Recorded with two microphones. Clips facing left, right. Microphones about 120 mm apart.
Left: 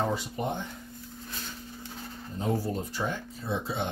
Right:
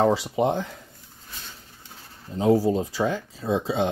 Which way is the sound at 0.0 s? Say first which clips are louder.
Right 9 dB; 90° right.